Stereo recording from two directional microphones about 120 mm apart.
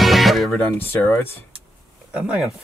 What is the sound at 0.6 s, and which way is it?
Speech, 15° left (ahead or behind).